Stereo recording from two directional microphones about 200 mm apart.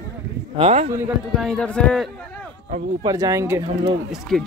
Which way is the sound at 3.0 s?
15° right (ahead or behind).